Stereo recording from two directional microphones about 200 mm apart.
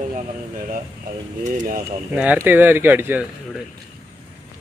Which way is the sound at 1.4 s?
40° right (ahead or behind).